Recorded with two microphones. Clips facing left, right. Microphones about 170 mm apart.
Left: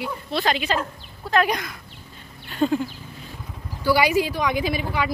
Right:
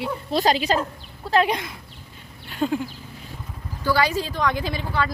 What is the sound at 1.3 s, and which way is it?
Speech, 25° right (ahead or behind).